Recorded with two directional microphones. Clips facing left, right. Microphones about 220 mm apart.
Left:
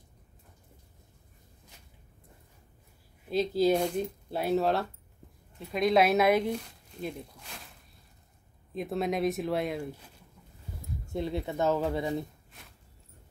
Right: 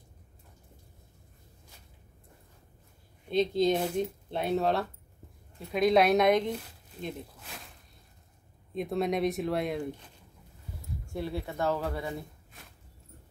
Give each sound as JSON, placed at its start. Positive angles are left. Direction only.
{"t": 3.3, "sound": "speech", "side_deg": 5}
{"t": 8.7, "sound": "speech", "side_deg": 0}
{"t": 11.1, "sound": "speech", "side_deg": 20}